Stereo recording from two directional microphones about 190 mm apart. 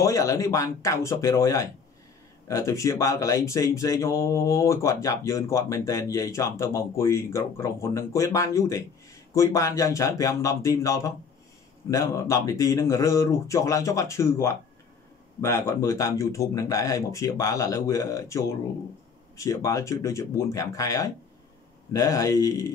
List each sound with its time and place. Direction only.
0.0 s speech: 15° left (ahead or behind)